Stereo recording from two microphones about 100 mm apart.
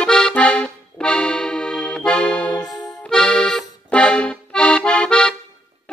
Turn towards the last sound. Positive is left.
turn(degrees=10)  # may be behind; listen again after turning